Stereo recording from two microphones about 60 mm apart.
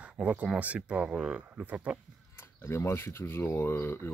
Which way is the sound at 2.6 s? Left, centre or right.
Left.